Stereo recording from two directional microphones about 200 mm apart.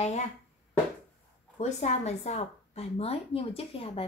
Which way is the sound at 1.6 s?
35° left (ahead or behind).